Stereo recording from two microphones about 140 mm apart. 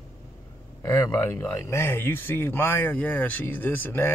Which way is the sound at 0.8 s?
20° left (ahead or behind).